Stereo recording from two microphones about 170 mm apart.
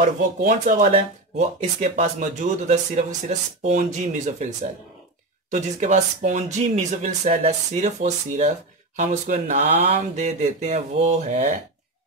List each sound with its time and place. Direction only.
0.0 s speech: 50° right (ahead or behind)
5.5 s speech: 45° right (ahead or behind)